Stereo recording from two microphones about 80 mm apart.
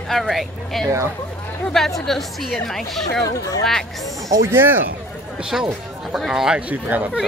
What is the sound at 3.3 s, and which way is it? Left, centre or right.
Speech, left.